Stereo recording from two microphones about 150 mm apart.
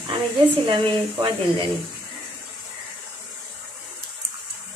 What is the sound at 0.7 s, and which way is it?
Speech, 35° right (ahead or behind).